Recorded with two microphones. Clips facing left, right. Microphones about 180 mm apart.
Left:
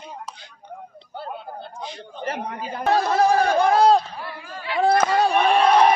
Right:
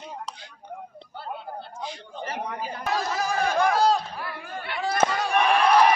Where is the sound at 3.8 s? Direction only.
60° left (ahead or behind).